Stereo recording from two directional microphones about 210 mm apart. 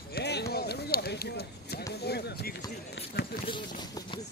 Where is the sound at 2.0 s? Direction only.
50° left (ahead or behind).